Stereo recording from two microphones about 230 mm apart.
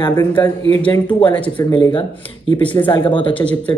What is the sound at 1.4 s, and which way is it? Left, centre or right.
Speech, centre.